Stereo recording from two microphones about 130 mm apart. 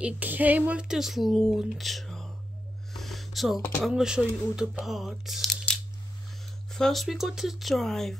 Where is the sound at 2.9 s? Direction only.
Centre (ahead or behind).